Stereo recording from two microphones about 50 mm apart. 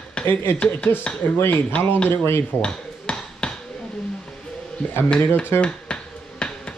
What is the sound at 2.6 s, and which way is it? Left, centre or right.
Hammer, centre.